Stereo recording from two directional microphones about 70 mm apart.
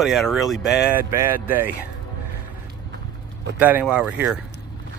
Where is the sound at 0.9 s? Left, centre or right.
Right.